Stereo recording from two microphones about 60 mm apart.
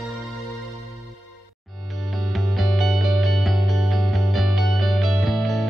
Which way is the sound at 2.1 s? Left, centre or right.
Centre.